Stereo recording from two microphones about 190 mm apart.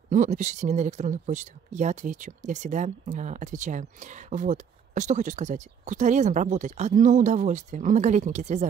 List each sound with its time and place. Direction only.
0.1 s speech: 40° right (ahead or behind)